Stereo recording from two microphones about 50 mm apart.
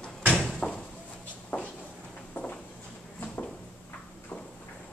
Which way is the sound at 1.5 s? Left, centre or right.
Left.